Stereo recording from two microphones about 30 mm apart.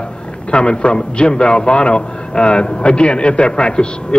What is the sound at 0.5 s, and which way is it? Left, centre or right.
A man's voice, left.